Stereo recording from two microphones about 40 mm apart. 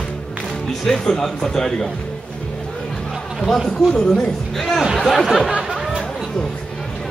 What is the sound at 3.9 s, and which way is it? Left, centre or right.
Speech, centre.